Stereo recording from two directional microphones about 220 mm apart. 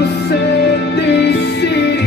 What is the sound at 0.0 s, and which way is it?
Music, 50° left (ahead or behind).